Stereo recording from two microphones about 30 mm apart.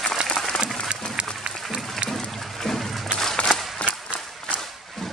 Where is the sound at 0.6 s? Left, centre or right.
Right.